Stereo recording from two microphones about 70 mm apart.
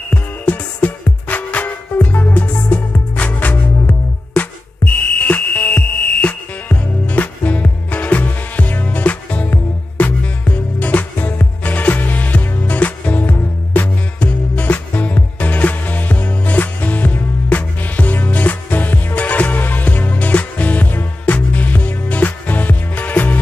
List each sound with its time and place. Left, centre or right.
0.1 s music: left